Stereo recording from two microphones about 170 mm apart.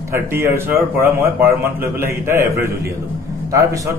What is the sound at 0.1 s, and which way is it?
A man's voice, 15° right (ahead or behind).